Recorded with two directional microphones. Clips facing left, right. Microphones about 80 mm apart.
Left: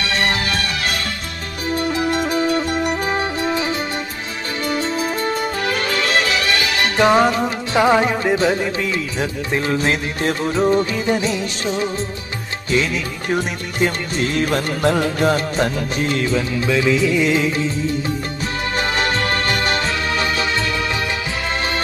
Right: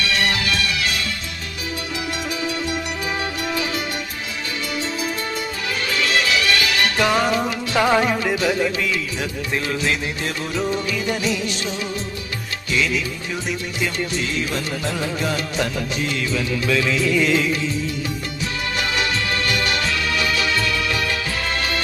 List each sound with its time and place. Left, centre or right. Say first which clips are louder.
0.0 s music: left 2 dB; left
7.8 s music: left 3 dB; centre; by 15.3 s left
15.3 s music: left 4 dB; left
16.6 s music: left 3 dB; left
18.8 s music: left 4 dB; left